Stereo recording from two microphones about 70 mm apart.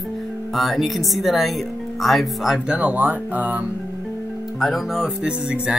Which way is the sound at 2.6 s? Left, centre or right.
Centre.